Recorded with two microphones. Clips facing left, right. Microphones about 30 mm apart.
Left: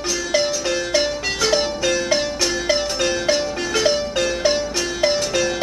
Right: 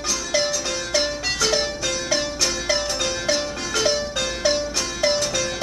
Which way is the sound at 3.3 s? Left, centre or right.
Centre.